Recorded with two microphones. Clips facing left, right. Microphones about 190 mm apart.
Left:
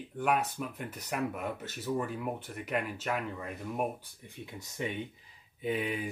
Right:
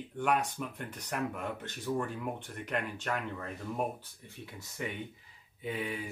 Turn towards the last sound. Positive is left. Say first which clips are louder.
# left 4 dB
turn(degrees=15)  # may be behind; listen again after turning